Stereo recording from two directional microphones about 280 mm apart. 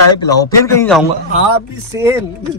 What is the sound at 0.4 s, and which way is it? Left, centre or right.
Speech, centre.